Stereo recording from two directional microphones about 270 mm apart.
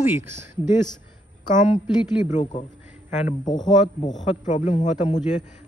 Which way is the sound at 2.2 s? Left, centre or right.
Left.